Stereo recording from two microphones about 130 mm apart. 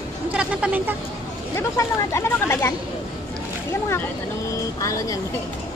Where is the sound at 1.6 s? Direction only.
20° left (ahead or behind).